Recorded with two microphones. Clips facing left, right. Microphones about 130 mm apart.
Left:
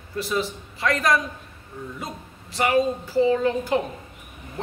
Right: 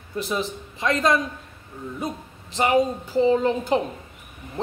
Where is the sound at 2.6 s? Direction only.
20° right (ahead or behind).